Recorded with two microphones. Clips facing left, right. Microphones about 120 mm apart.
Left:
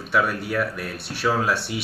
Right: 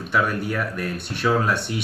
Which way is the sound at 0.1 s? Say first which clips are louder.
Even; 5° left (ahead or behind).